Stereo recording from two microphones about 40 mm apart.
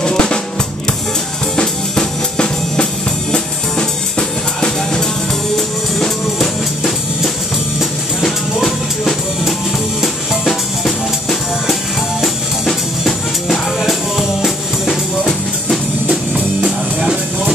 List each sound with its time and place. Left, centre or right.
0.0 s drum: left
1.6 s drum: left
5.9 s music: centre
8.2 s music: centre
10.4 s drum: centre
12.2 s music: centre
16.1 s music: centre